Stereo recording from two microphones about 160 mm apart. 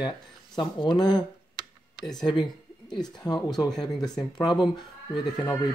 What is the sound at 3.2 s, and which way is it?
Speech, 25° left (ahead or behind).